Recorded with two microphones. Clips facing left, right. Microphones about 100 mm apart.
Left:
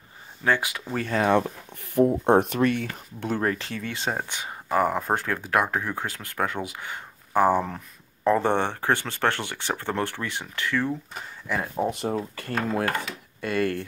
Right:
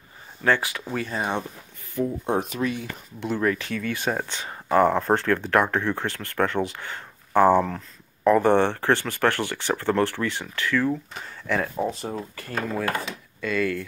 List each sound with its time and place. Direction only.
0.4 s speech: 20° left (ahead or behind)
1.0 s speech: 90° left
2.2 s speech: 60° left (ahead or behind)
3.4 s speech: 30° left (ahead or behind)
11.4 s speech: 10° left (ahead or behind)
12.4 s speech: 45° left (ahead or behind)